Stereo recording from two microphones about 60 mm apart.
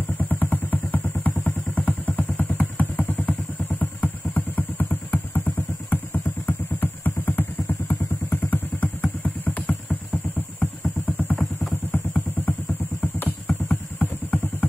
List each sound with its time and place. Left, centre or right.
0.0 s vehicle: left
10.1 s music: left
11.9 s vehicle: left
13.0 s music: left